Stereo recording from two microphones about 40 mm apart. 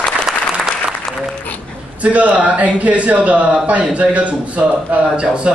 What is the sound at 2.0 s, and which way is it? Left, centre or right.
A man's voice, right.